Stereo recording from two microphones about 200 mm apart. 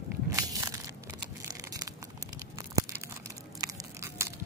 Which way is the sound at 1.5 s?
20° right (ahead or behind).